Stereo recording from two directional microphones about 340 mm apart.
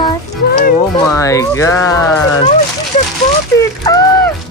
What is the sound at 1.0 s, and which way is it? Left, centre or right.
Speech, centre.